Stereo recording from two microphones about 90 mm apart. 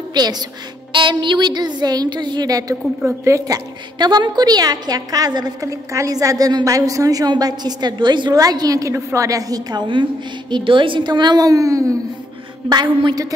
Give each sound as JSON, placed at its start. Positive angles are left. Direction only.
{"t": 0.1, "sound": "a woman's voice", "side_deg": -50}
{"t": 0.9, "sound": "a woman's voice", "side_deg": -65}
{"t": 3.1, "sound": "a woman's voice", "side_deg": -35}
{"t": 8.4, "sound": "a woman's voice", "side_deg": -40}
{"t": 10.5, "sound": "a woman's voice", "side_deg": -65}
{"t": 12.6, "sound": "a woman's voice", "side_deg": -55}